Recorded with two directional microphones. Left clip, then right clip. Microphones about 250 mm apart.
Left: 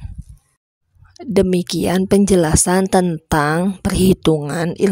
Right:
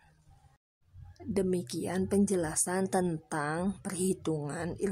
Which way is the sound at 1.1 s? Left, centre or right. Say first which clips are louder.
Left 15 dB; left.